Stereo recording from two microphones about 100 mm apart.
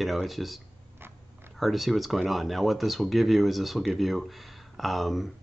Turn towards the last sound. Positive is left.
turn(degrees=0)  # may be behind; listen again after turning